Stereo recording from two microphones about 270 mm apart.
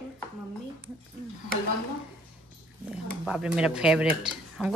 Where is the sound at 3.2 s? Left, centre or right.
Centre.